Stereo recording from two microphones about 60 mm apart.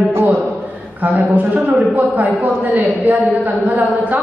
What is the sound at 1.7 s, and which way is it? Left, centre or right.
A man's voice, right.